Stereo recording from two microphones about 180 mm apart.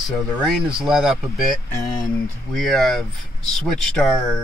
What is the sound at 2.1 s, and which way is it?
Speech, 5° left (ahead or behind).